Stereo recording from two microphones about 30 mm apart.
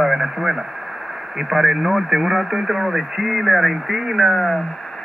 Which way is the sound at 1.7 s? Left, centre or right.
Centre.